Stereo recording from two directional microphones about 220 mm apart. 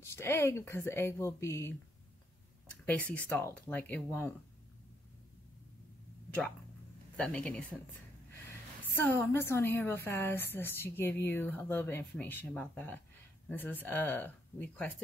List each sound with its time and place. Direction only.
0.0 s a woman's voice: 10° left (ahead or behind)
2.9 s a woman's voice: 5° left (ahead or behind)
7.2 s speech: 5° left (ahead or behind)
8.9 s a woman's voice: 10° left (ahead or behind)